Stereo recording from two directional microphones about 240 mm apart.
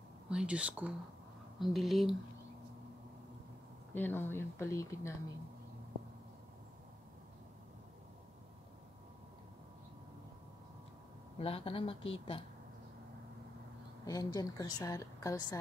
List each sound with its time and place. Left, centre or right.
0.3 s speech: centre
3.9 s a woman's voice: centre
11.3 s a woman's voice: left
14.0 s a woman's voice: centre